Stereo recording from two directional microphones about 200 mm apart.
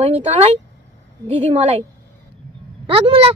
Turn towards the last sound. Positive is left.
turn(degrees=-25)  # may be behind; listen again after turning